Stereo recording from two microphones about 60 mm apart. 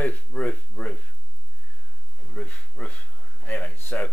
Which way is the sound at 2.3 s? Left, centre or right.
Left.